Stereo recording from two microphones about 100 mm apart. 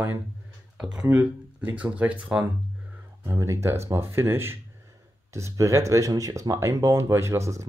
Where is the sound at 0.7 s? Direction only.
10° right (ahead or behind).